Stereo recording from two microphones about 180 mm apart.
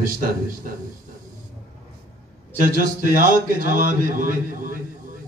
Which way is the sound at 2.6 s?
50° right (ahead or behind).